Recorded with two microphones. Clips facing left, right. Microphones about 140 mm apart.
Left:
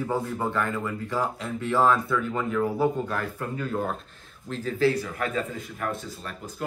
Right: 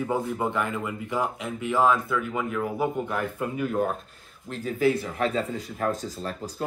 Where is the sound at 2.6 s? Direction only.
15° right (ahead or behind).